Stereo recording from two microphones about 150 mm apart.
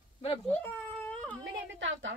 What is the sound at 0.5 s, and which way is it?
Cat, 10° left (ahead or behind).